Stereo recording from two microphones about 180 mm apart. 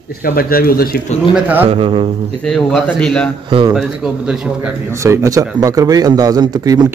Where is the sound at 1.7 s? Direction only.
30° right (ahead or behind).